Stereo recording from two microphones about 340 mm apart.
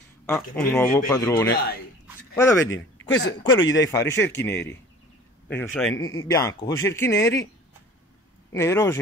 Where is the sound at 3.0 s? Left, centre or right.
Left.